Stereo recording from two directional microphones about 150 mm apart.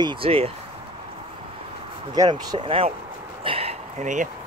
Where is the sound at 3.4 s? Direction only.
40° right (ahead or behind).